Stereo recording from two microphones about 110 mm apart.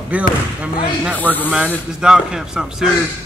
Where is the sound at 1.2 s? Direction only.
15° left (ahead or behind).